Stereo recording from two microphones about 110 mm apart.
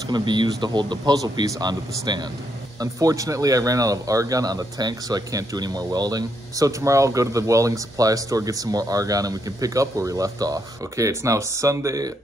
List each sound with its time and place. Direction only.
0.1 s speech: 45° right (ahead or behind)